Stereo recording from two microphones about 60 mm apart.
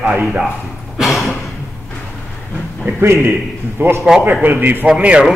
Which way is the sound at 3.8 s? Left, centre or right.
Right.